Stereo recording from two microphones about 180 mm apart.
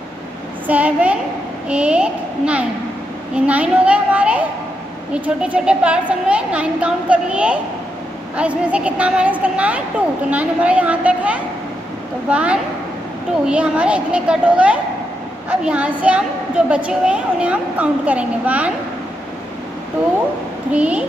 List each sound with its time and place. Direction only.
0.7 s a woman's voice: 10° right (ahead or behind)
20.7 s a woman's voice: 5° right (ahead or behind)